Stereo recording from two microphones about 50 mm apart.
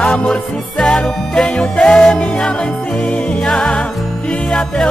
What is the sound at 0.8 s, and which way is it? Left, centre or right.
Music, centre.